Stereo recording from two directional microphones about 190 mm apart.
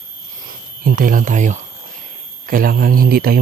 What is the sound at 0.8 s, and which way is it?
A man's voice, 45° right (ahead or behind).